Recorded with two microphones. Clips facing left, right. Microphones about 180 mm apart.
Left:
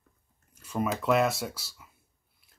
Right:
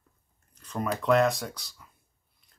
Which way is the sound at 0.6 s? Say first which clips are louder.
Left 1 dB; 10° left (ahead or behind).